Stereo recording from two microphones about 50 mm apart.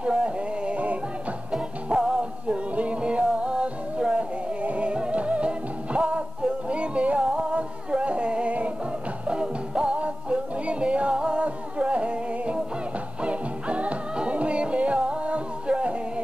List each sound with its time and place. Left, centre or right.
0.0 s music: right